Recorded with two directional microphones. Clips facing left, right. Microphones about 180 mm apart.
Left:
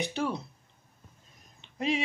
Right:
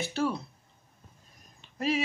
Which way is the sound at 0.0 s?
20° left (ahead or behind).